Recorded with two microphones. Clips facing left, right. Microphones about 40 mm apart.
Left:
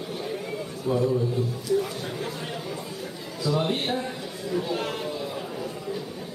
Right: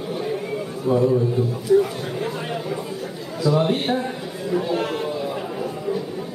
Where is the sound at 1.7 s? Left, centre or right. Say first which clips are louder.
Right 8 dB; right.